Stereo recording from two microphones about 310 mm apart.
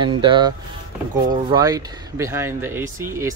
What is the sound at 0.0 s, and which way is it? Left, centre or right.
A man's voice, centre.